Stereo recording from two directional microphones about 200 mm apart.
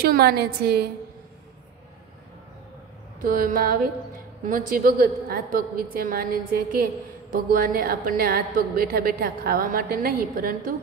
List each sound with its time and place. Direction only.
0.0 s a woman's voice: 50° right (ahead or behind)
3.2 s a woman's voice: 45° right (ahead or behind)